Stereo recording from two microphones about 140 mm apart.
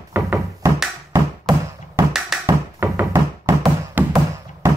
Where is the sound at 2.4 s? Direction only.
15° right (ahead or behind).